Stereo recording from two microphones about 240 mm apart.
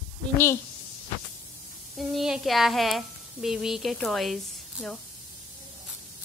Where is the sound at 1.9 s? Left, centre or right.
Centre.